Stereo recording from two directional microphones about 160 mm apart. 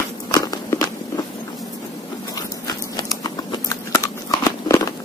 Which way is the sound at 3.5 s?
20° left (ahead or behind).